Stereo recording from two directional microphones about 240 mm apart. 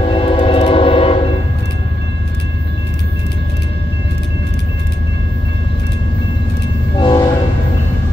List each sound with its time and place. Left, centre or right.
0.0 s train: left
7.0 s train horn: centre